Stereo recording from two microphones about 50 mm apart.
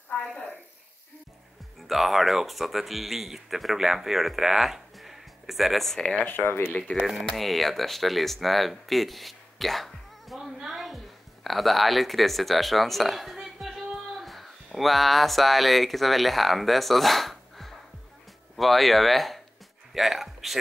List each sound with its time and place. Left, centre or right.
1.8 s speech: centre
5.9 s speech: left
6.4 s speech: left
7.1 s speech: centre
10.7 s a sound: centre
11.4 s speech: centre